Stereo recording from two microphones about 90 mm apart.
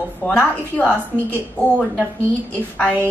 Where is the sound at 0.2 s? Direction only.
15° left (ahead or behind).